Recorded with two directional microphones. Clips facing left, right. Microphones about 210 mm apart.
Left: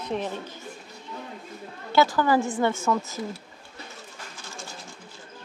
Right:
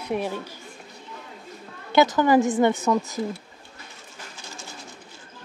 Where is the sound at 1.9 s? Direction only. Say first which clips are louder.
Right 3 dB; 20° right (ahead or behind).